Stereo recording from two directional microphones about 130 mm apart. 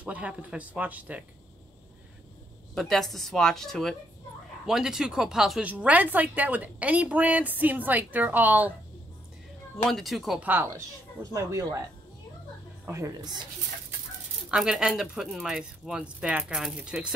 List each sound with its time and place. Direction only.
0.0 s a woman's voice: 10° right (ahead or behind)
2.7 s a woman's voice: 5° left (ahead or behind); by 8.7 s 15° right (ahead or behind)
9.8 s speech: centre (ahead or behind)
10.4 s a woman's voice: 15° right (ahead or behind)
12.8 s a woman's voice: 25° right (ahead or behind)
14.5 s speech: 5° right (ahead or behind)